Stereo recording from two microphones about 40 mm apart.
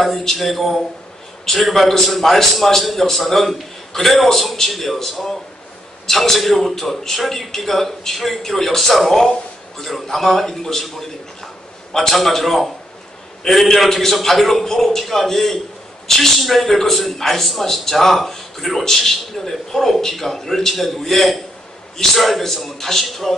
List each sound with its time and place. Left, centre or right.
0.0 s a man's voice: centre